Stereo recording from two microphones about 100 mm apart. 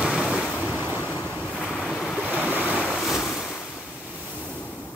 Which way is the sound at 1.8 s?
5° left (ahead or behind).